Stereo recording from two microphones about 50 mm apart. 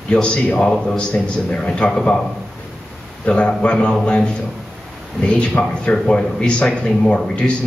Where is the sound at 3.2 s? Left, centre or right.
Left.